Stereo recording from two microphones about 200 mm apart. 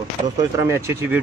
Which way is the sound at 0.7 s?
10° right (ahead or behind).